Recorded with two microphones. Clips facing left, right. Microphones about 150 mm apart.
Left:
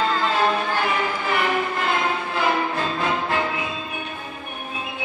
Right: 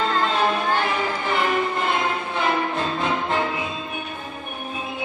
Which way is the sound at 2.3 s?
20° right (ahead or behind).